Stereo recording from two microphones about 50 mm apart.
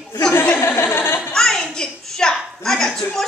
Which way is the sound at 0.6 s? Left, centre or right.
Left.